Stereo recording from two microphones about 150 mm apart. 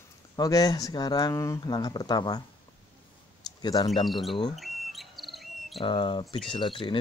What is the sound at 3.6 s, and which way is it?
Speech, 30° left (ahead or behind).